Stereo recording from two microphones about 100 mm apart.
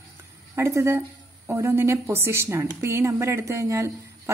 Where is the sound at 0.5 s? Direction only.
25° right (ahead or behind).